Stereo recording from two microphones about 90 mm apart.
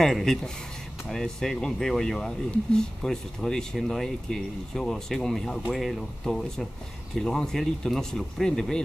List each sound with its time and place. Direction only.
0.0 s speech: 5° left (ahead or behind)